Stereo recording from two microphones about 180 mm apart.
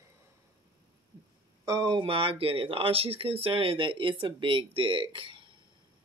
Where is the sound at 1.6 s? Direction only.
20° right (ahead or behind).